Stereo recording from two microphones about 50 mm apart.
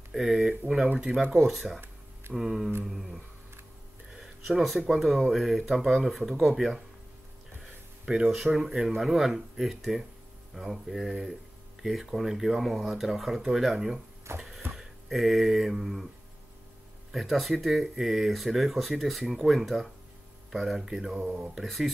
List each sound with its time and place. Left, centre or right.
0.1 s speech: centre
2.3 s speech: centre
8.3 s speech: centre
14.3 s a sound: right
14.7 s a sound: centre
17.1 s speech: centre
21.5 s speech: centre